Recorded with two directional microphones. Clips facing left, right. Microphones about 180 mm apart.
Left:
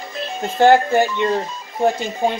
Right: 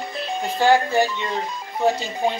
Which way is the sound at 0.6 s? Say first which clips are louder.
Left 5 dB; 55° left (ahead or behind).